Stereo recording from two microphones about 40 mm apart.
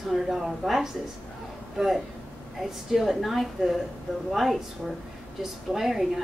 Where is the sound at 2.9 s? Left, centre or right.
Centre.